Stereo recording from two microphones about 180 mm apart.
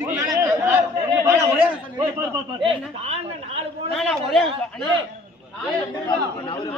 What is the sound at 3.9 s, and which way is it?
Speech, centre (ahead or behind).